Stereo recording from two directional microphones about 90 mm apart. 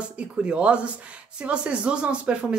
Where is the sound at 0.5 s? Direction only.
15° right (ahead or behind).